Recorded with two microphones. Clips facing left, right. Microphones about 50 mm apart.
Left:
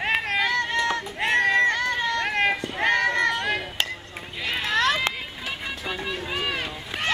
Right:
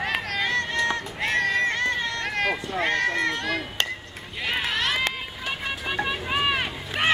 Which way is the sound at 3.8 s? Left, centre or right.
Centre.